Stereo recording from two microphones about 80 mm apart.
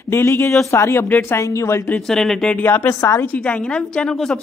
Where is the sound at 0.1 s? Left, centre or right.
Left.